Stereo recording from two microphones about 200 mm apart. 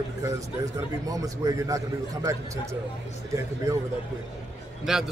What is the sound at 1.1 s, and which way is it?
Speech, 15° right (ahead or behind).